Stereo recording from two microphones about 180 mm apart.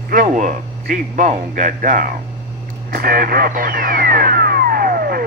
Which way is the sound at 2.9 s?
55° right (ahead or behind).